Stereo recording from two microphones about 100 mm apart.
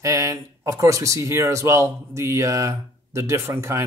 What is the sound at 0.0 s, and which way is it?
Speech, 30° right (ahead or behind).